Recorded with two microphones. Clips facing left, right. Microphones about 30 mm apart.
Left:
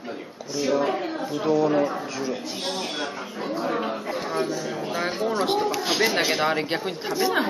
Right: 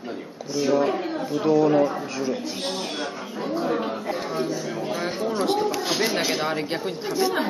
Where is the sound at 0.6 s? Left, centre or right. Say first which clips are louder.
Right 2 dB; centre.